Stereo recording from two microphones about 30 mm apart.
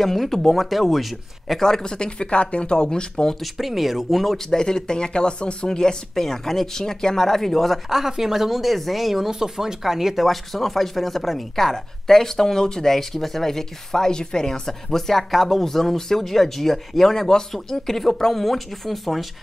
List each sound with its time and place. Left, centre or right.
0.0 s speech: centre
0.6 s speech: centre
1.6 s speech: centre
3.3 s speech: centre
4.5 s speech: left
5.7 s speech: centre
8.2 s speech: centre
9.3 s speech: centre
10.2 s speech: centre; by 12.9 s left
12.9 s speech: centre
14.7 s speech: centre